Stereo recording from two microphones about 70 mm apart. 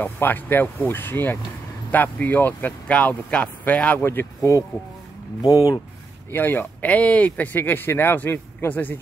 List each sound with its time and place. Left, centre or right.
0.0 s speech: left
4.0 s speech: left
5.4 s speech: left
6.3 s speech: left